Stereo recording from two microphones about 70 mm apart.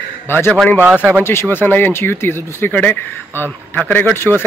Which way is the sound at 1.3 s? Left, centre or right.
Left.